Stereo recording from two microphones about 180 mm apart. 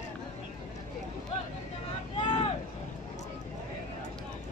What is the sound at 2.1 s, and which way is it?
Vehicle, 25° left (ahead or behind).